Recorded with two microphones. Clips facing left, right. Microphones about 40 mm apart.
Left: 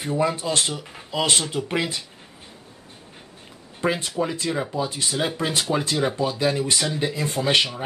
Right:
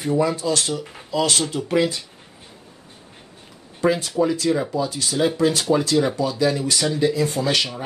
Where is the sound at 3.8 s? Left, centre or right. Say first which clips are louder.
Right 4 dB; left.